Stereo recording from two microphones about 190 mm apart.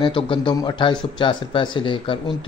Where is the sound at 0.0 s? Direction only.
25° left (ahead or behind).